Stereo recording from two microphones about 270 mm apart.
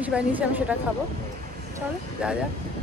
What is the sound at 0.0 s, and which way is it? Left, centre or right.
Speech, centre.